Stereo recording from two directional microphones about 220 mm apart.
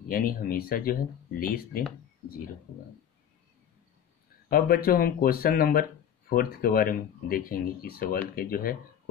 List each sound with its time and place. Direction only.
0.1 s speech: 40° left (ahead or behind)
4.5 s speech: 40° left (ahead or behind)